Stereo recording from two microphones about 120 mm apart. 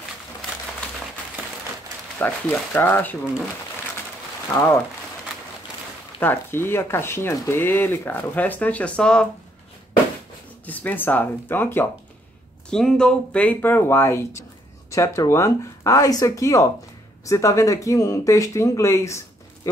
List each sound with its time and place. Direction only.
2.1 s speech: 10° left (ahead or behind)
6.1 s speech: 20° left (ahead or behind)
10.6 s speech: 15° left (ahead or behind)
12.6 s speech: 5° left (ahead or behind); by 19.7 s 25° left (ahead or behind)